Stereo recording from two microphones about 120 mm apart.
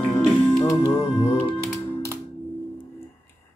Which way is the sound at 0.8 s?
20° left (ahead or behind).